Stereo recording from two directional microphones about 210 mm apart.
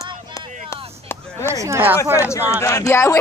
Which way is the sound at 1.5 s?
15° right (ahead or behind).